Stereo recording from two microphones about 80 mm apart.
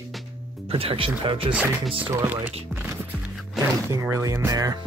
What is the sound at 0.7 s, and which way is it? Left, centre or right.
Speech, right.